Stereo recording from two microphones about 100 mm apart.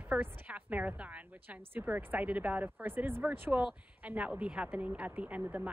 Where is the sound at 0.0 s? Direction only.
15° right (ahead or behind).